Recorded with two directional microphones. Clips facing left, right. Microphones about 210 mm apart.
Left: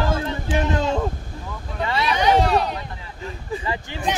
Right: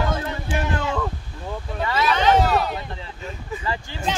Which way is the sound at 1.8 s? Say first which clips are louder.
Even; 20° left (ahead or behind).